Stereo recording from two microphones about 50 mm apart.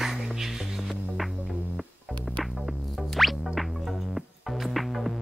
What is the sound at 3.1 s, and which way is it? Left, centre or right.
Music, centre.